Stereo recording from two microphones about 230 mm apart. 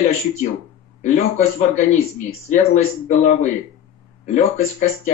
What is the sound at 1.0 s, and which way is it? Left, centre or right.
A man's voice, left.